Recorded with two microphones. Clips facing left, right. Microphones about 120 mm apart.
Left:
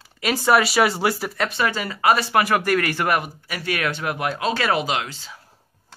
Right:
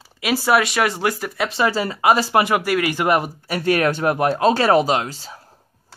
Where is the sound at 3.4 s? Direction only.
45° right (ahead or behind).